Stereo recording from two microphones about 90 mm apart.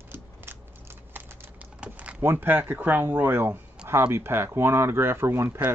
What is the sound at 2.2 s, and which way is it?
Speech, 25° right (ahead or behind).